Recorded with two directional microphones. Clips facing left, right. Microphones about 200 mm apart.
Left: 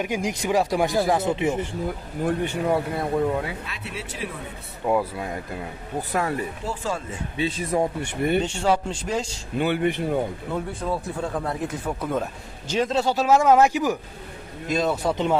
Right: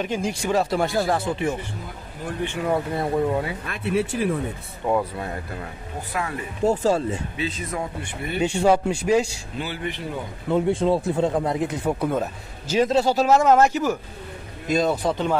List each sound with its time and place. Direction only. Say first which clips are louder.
0.0 s speech: right 1 dB; 15° left (ahead or behind)
2.7 s speech: right 2 dB; centre (ahead or behind)
3.6 s speech: right 11 dB; 55° right (ahead or behind)
4.8 s speech: even; 10° left (ahead or behind)
6.1 s speech: left 3 dB; 40° left (ahead or behind)
6.6 s speech: right 9 dB; 40° right (ahead or behind)
7.3 s speech: left 4 dB; 30° left (ahead or behind)
8.4 s speech: right 3 dB; 10° right (ahead or behind)
9.6 s speech: left 7 dB; 55° left (ahead or behind)
10.5 s speech: right 11 dB; 25° right (ahead or behind); by 13.3 s centre (ahead or behind)
13.3 s speech: left 1 dB; 10° left (ahead or behind)
14.7 s speech: right 2 dB; centre (ahead or behind)